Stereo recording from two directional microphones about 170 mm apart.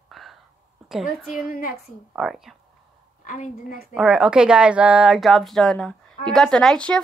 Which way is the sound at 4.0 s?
5° right (ahead or behind).